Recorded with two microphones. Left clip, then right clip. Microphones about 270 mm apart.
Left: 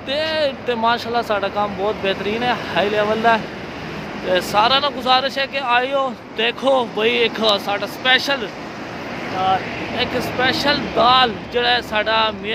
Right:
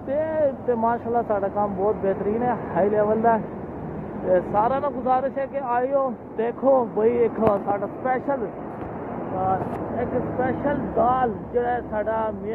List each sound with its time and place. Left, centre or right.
0.1 s speech: left
10.4 s speech: centre